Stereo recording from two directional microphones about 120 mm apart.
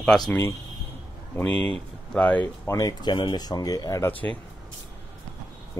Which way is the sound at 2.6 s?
25° left (ahead or behind).